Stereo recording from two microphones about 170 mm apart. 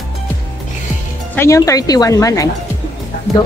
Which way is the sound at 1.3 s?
15° left (ahead or behind).